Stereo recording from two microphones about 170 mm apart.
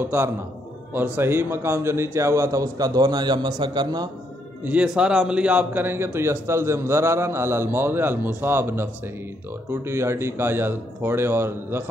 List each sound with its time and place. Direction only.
0.0 s a man's voice: 15° right (ahead or behind)
4.6 s a man's voice: 5° right (ahead or behind)